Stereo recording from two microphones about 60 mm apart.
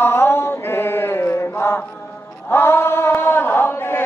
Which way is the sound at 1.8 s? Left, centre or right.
Left.